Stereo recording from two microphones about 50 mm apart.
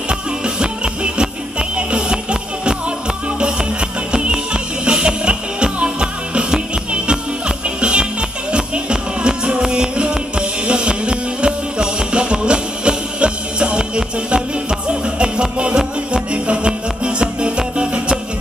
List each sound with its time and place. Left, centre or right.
0.1 s music: centre
4.1 s music: centre